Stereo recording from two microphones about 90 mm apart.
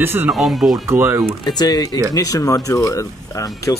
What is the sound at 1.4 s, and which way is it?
Speech, 50° left (ahead or behind).